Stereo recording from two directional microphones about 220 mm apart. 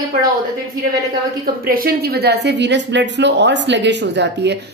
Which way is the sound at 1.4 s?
45° right (ahead or behind).